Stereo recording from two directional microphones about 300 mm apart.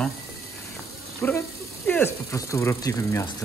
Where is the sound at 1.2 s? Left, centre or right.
Centre.